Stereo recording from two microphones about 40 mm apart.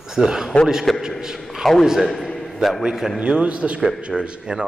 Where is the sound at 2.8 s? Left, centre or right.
Centre.